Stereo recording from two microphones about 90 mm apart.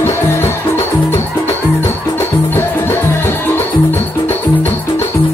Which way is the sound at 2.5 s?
25° left (ahead or behind).